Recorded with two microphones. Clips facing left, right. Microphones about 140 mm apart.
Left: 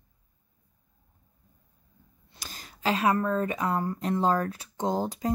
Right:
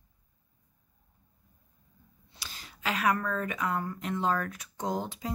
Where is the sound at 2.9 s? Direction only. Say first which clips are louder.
Left 4 dB; 25° left (ahead or behind).